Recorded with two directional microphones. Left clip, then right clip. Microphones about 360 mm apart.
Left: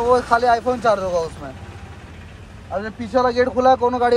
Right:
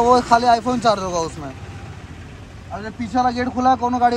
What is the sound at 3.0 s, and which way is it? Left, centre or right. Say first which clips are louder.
Speech: left 2 dB; centre.